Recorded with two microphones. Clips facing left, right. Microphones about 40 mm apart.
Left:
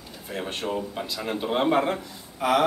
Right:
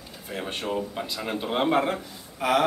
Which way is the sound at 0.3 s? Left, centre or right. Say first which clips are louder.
Even; centre.